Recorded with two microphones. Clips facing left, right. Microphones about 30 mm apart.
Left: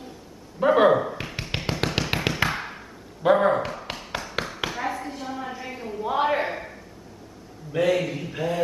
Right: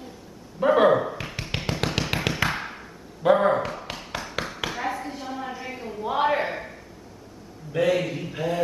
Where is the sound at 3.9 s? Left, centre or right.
Centre.